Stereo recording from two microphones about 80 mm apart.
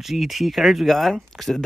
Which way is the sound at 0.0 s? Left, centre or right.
Centre.